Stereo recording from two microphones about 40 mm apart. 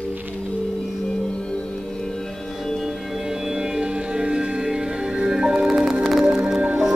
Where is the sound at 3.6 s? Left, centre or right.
Centre.